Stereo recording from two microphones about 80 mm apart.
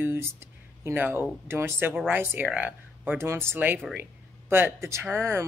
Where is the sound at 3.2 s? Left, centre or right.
Right.